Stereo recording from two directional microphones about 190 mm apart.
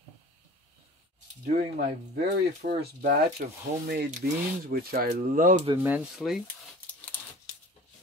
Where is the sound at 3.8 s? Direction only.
55° right (ahead or behind).